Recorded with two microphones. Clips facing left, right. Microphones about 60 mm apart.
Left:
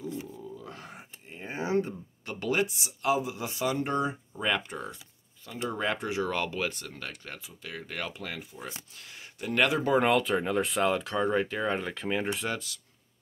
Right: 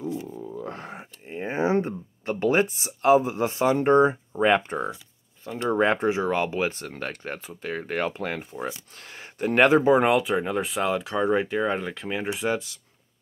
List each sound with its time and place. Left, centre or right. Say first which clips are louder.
0.4 s speech: right 8 dB; right
6.7 s speech: right 7 dB; right
9.8 s speech: right 5 dB; centre